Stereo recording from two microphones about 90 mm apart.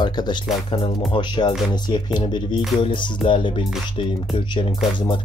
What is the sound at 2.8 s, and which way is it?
Speech, 75° left (ahead or behind).